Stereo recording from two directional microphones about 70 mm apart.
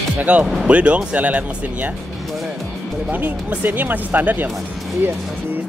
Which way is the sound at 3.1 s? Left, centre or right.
Right.